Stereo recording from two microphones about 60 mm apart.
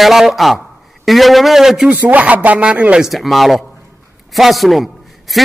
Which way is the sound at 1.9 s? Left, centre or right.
Right.